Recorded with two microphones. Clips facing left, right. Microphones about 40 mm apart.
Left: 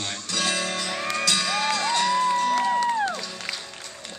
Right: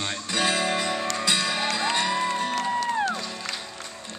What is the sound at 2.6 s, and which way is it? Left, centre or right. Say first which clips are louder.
Music: left 3 dB; centre.